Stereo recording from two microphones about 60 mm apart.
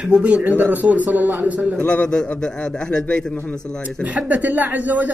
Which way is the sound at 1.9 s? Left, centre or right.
Centre.